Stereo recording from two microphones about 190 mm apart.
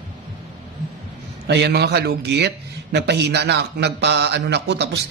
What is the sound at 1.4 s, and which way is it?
A man's voice, 60° right (ahead or behind).